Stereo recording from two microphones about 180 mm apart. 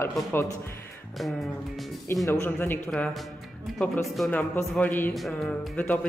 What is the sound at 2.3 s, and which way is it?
Speech, 10° left (ahead or behind).